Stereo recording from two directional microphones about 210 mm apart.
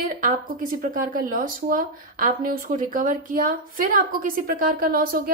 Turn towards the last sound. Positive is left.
turn(degrees=-45)  # may be behind; listen again after turning